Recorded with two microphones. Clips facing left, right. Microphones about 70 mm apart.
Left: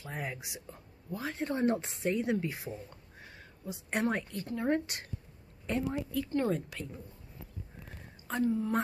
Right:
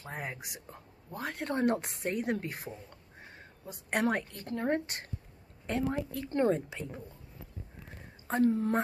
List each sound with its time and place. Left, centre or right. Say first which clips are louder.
0.0 s a woman's voice: even; right
4.6 s speech: even; right
8.3 s a woman's voice: right 3 dB; right